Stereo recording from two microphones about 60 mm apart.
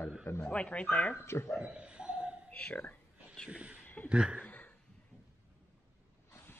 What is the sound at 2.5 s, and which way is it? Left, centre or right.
Speech, left.